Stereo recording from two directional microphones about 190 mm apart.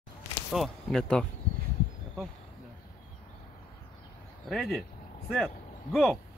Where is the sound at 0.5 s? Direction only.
Centre (ahead or behind).